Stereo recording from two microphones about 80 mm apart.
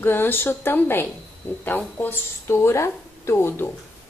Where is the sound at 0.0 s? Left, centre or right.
Left.